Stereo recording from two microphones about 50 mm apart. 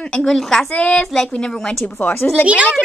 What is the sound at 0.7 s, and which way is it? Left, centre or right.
Speech, left.